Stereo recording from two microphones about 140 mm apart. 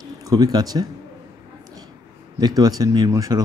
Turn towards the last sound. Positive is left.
turn(degrees=-25)  # may be behind; listen again after turning